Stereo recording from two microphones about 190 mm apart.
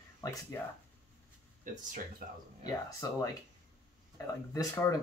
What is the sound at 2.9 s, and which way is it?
Speech, 20° left (ahead or behind).